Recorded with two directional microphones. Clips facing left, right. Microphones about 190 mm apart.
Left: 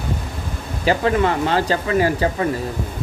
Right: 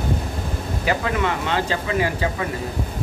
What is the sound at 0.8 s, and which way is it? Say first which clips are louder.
Speech: left 5 dB; 35° left (ahead or behind).